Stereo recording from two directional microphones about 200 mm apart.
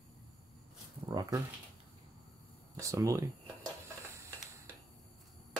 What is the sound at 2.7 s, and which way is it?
Speech, 15° right (ahead or behind).